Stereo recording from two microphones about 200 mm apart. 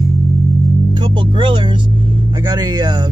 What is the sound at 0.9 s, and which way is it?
Speech, 25° right (ahead or behind).